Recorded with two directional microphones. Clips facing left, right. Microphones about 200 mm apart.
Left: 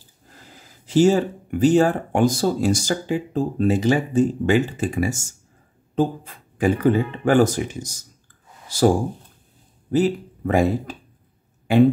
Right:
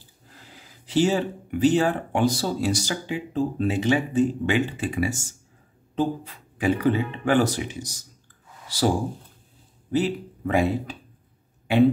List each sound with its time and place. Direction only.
0.8 s speech: 45° left (ahead or behind)